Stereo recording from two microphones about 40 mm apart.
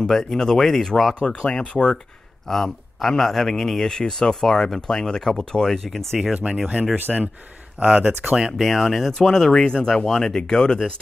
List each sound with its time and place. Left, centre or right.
0.1 s a man's voice: centre
1.2 s speech: left
2.4 s a man's voice: centre
5.9 s speech: centre
7.8 s speech: right
8.3 s speech: centre
8.6 s speech: centre
9.5 s a man's voice: left